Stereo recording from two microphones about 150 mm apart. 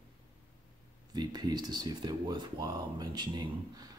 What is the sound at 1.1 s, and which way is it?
Speech, 25° right (ahead or behind).